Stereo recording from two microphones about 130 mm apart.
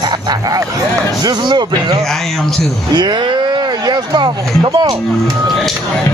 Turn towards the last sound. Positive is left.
turn(degrees=-35)  # may be behind; listen again after turning